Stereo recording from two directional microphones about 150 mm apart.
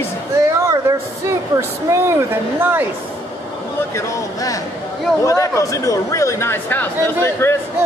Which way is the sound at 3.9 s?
20° left (ahead or behind).